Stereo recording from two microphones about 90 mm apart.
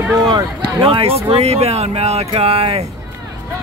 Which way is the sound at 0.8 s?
90° right.